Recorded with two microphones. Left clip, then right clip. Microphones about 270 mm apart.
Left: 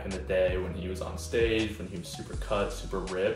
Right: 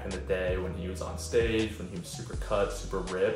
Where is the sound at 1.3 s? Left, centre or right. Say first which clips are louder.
Even; centre.